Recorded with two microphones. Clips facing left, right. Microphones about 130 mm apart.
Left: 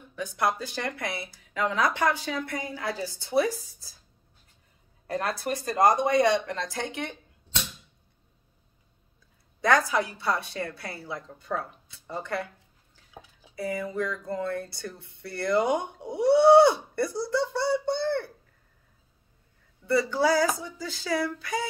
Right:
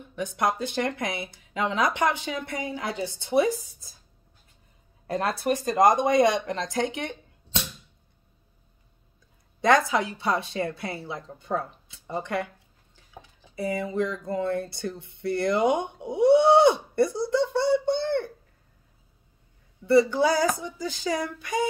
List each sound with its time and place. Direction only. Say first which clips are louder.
0.1 s speech: right 1 dB; 20° right (ahead or behind)
5.1 s speech: right 4 dB; 20° right (ahead or behind)
9.6 s speech: right 2 dB; 20° right (ahead or behind)
13.6 s speech: right 3 dB; 20° right (ahead or behind)
19.9 s speech: right 3 dB; 20° right (ahead or behind)